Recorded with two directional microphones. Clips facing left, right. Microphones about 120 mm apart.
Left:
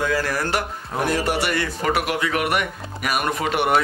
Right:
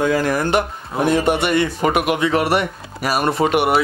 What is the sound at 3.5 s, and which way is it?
Speech, 10° right (ahead or behind).